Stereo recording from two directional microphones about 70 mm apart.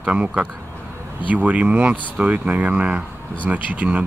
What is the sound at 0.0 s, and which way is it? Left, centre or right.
Speech, centre.